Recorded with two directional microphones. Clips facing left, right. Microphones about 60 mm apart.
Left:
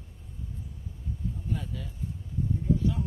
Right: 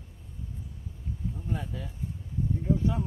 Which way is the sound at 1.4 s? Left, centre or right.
Right.